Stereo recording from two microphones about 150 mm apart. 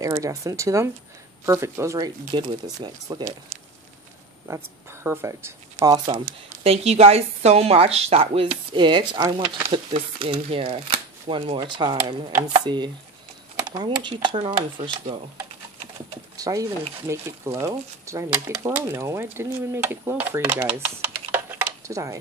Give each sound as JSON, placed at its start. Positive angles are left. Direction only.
{"t": 0.0, "sound": "speech", "side_deg": -20}
{"t": 4.5, "sound": "speech", "side_deg": -15}
{"t": 6.1, "sound": "a woman's voice", "side_deg": -40}
{"t": 16.3, "sound": "speech", "side_deg": -20}
{"t": 21.3, "sound": "a sound", "side_deg": -15}